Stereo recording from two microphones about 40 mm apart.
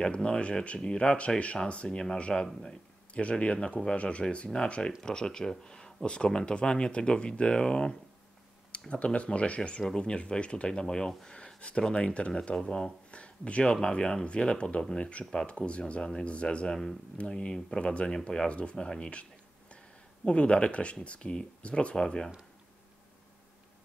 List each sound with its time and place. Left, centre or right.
0.0 s speech: left
1.9 s speech: centre
2.1 s speech: left
5.0 s speech: centre
9.6 s speech: centre
11.2 s a sound: left
11.8 s speech: left
12.5 s speech: centre
20.2 s speech: left